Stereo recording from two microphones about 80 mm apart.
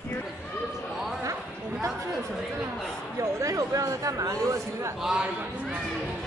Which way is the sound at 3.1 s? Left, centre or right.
Right.